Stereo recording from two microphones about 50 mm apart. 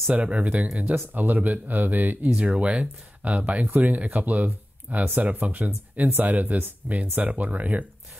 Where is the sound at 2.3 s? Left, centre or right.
Right.